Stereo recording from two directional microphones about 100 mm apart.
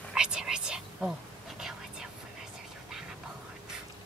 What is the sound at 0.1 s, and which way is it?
Whispering, 5° right (ahead or behind).